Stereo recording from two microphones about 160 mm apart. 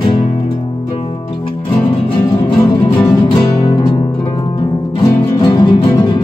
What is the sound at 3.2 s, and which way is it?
Music, 30° left (ahead or behind).